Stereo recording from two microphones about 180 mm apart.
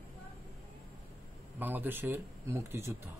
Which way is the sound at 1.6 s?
10° right (ahead or behind).